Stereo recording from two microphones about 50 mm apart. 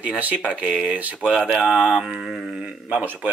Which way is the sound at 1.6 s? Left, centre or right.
Centre.